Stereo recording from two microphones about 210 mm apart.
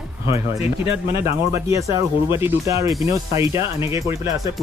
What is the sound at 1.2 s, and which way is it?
Speech, 15° right (ahead or behind).